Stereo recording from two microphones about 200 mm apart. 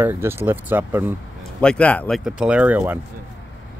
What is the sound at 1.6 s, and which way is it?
Speech, 5° left (ahead or behind).